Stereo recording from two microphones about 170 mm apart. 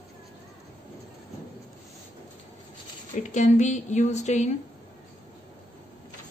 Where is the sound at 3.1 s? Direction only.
45° left (ahead or behind).